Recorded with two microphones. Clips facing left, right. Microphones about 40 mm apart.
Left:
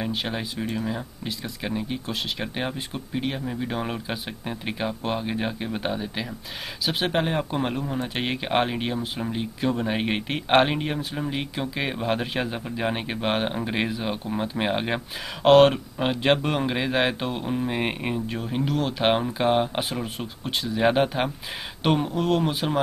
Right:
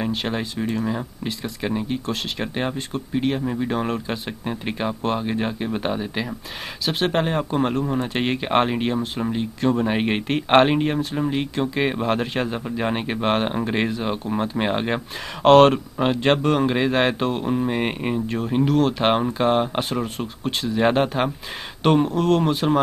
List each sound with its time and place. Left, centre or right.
0.1 s speech: centre
3.8 s speech: centre
4.5 s speech: centre
7.8 s speech: centre
8.1 s speech: centre